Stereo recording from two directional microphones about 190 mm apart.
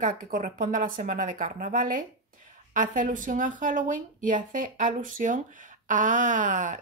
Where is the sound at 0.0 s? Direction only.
45° right (ahead or behind).